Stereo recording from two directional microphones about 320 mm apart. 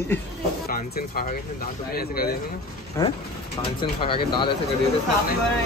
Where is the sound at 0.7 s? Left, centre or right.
Left.